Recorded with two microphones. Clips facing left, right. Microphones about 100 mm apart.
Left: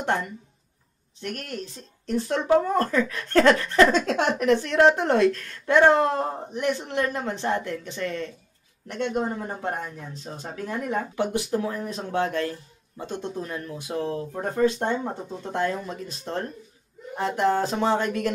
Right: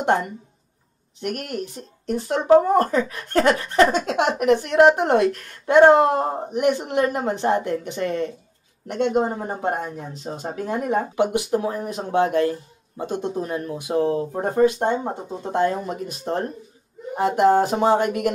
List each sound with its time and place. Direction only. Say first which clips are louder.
0.0 s speech: right 6 dB; 20° right (ahead or behind)
11.2 s speech: right 4 dB; 15° right (ahead or behind)